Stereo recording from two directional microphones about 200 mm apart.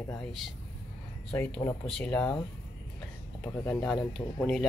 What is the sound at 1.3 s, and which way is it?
Speech, 5° left (ahead or behind).